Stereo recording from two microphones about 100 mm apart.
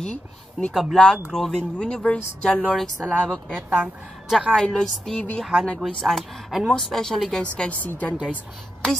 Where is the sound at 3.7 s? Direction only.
10° right (ahead or behind).